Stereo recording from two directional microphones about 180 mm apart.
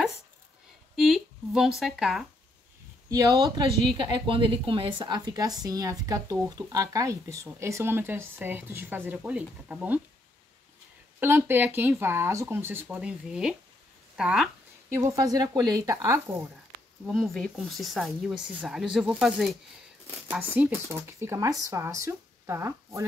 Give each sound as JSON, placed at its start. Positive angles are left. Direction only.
{"t": 0.9, "sound": "a sound", "side_deg": 0}
{"t": 1.8, "sound": "speech", "side_deg": 0}
{"t": 3.1, "sound": "a woman's voice", "side_deg": -20}
{"t": 11.1, "sound": "speech", "side_deg": -10}
{"t": 14.9, "sound": "a woman's voice", "side_deg": -15}
{"t": 17.0, "sound": "speech", "side_deg": 0}